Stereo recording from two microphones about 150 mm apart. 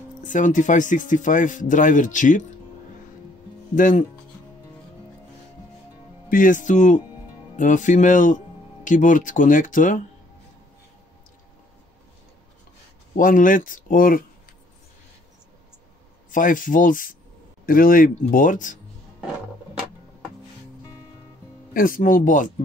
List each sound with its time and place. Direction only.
0.2 s speech: 60° left (ahead or behind)
3.7 s speech: 60° left (ahead or behind)
6.2 s speech: 65° left (ahead or behind)
13.1 s speech: 65° left (ahead or behind)
16.3 s speech: 60° left (ahead or behind)
21.7 s speech: 70° left (ahead or behind)